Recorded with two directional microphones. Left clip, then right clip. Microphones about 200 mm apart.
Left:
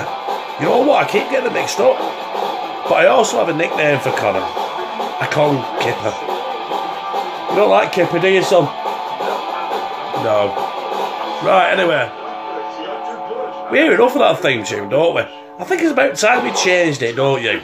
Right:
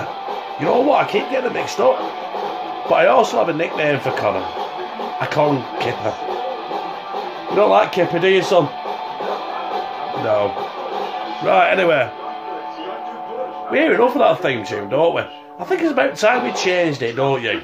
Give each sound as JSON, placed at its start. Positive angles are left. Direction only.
{"t": 0.6, "sound": "a man's voice", "side_deg": 5}
{"t": 2.9, "sound": "a man's voice", "side_deg": 5}
{"t": 7.6, "sound": "a man's voice", "side_deg": 0}
{"t": 11.4, "sound": "a man's voice", "side_deg": -5}
{"t": 11.7, "sound": "speech", "side_deg": -20}
{"t": 13.7, "sound": "a man's voice", "side_deg": 5}